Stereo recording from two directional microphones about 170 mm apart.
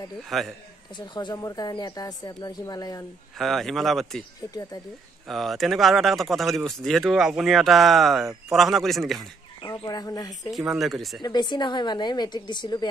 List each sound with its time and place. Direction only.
0.3 s speech: centre (ahead or behind)
0.9 s speech: 25° left (ahead or behind)
3.3 s speech: centre (ahead or behind)
5.3 s speech: centre (ahead or behind)
9.6 s speech: 20° left (ahead or behind)
10.7 s speech: centre (ahead or behind)
11.2 s speech: 25° left (ahead or behind)